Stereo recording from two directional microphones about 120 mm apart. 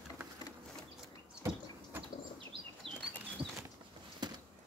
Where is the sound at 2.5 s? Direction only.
50° right (ahead or behind).